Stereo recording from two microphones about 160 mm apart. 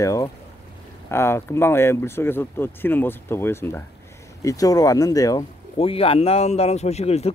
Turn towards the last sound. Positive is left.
turn(degrees=40)  # may be behind; listen again after turning